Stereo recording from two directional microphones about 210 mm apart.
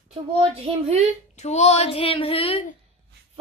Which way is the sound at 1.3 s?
30° left (ahead or behind).